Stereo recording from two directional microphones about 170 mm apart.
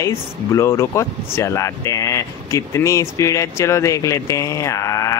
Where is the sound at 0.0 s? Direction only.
15° left (ahead or behind).